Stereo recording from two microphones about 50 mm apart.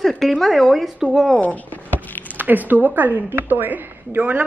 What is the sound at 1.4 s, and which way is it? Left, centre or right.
Speech, left.